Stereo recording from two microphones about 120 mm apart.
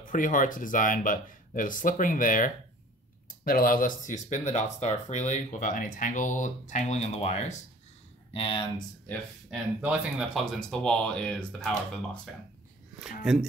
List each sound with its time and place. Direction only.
0.0 s speech: 90° left
4.0 s speech: 90° left; by 7.5 s 70° left (ahead or behind)
8.3 s speech: 45° left (ahead or behind)
9.5 s speech: 5° right (ahead or behind)
10.3 s speech: 5° left (ahead or behind)
13.0 s speech: 5° right (ahead or behind)